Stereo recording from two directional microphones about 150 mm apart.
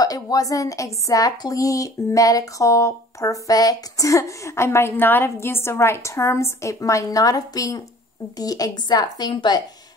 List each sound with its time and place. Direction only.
0.0 s speech: 25° left (ahead or behind)